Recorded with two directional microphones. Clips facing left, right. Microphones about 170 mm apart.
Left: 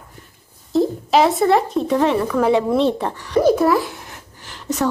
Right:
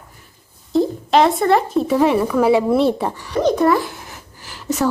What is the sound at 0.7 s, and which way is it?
Speech, centre (ahead or behind).